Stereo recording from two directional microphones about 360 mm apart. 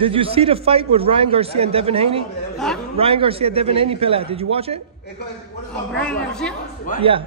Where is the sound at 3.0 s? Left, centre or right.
Centre.